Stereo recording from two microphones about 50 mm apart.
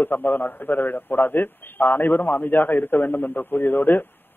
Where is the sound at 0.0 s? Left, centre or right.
Left.